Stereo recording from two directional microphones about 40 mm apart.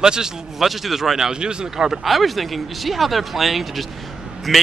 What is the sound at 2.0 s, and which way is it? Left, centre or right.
Speech, centre.